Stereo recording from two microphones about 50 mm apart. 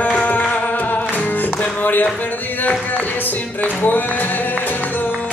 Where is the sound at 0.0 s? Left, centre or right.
Left.